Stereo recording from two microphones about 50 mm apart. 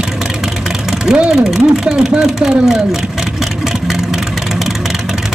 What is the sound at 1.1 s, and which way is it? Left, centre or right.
Speech, centre.